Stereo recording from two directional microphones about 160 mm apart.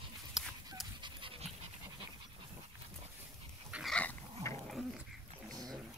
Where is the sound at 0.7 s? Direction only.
30° right (ahead or behind).